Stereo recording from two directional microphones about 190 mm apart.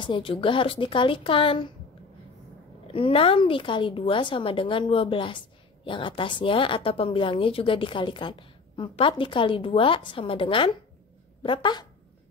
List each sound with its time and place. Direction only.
0.0 s speech: 25° left (ahead or behind)
2.9 s speech: 30° left (ahead or behind)